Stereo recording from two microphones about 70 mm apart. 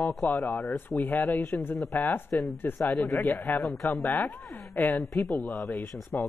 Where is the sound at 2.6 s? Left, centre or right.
Left.